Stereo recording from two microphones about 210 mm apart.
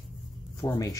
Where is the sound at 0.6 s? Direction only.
15° left (ahead or behind).